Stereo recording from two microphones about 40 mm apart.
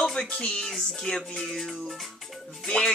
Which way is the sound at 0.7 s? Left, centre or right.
Centre.